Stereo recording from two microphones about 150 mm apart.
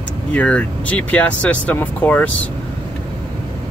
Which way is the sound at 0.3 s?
10° left (ahead or behind).